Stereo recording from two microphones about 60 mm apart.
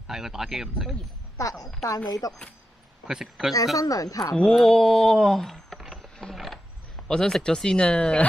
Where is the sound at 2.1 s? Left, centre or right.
Left.